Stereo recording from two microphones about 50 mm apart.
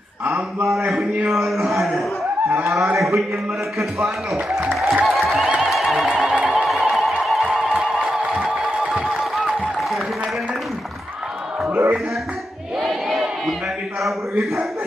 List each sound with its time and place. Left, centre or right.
1.3 s a man's voice: centre
2.5 s a man's voice: right
3.0 s a man's voice: centre
5.0 s a sound: centre
6.4 s music: centre
11.7 s music: right
12.8 s crowd: centre